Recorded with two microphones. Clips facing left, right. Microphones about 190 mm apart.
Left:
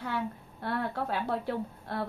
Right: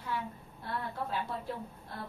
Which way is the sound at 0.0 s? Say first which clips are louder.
Left 4 dB; 70° left (ahead or behind).